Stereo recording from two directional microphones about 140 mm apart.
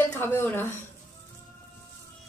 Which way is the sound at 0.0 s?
15° left (ahead or behind).